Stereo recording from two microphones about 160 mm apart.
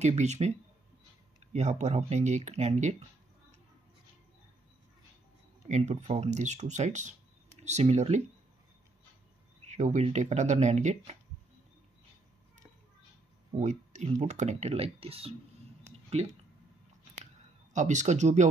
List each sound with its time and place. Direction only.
0.0 s speech: 45° right (ahead or behind)
5.7 s speech: 45° right (ahead or behind)
9.7 s speech: 45° right (ahead or behind)
13.6 s speech: 45° right (ahead or behind)
17.7 s speech: 50° right (ahead or behind)